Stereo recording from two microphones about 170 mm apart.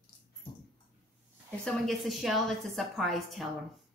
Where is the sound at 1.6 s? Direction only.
Centre (ahead or behind).